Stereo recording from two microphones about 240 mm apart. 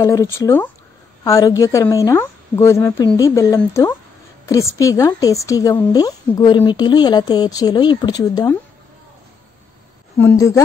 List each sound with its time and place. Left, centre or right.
0.0 s a woman's voice: centre
10.1 s a woman's voice: centre